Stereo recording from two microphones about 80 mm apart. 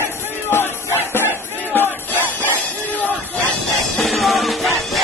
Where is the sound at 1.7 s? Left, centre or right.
Left.